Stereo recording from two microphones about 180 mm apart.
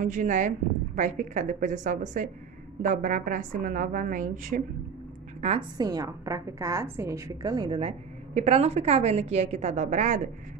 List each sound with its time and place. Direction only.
0.0 s a woman's voice: 45° right (ahead or behind)
5.8 s a woman's voice: 20° right (ahead or behind)
8.4 s a woman's voice: 35° right (ahead or behind)